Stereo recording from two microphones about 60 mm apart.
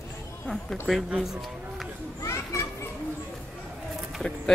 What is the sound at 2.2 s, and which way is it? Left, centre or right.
Children playing, left.